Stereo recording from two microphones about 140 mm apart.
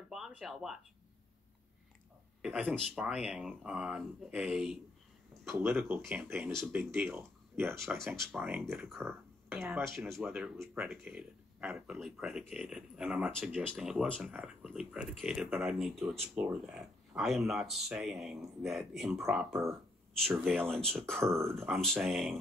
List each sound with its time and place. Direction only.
0.1 s speech: 5° right (ahead or behind)
2.4 s speech: 5° right (ahead or behind)
5.5 s speech: 15° right (ahead or behind)
8.2 s speech: centre (ahead or behind)
8.5 s speech: 15° right (ahead or behind)
8.7 s speech: centre (ahead or behind)
9.0 s speech: 15° right (ahead or behind)
9.8 s speech: 5° left (ahead or behind)
14.3 s speech: 5° right (ahead or behind)